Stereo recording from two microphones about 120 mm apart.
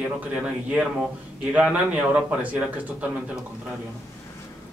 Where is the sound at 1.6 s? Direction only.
10° right (ahead or behind).